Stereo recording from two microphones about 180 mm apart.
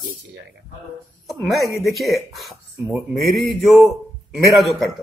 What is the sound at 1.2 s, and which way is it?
Speech, centre (ahead or behind).